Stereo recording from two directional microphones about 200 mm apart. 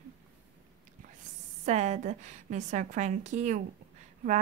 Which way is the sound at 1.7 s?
35° right (ahead or behind).